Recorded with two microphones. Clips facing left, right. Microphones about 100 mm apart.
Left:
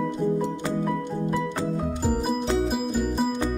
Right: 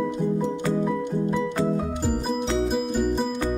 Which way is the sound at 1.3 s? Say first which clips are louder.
Right 2 dB; 5° left (ahead or behind).